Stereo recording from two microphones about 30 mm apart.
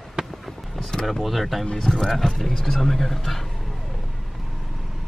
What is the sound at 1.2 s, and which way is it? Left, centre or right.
Speech, centre.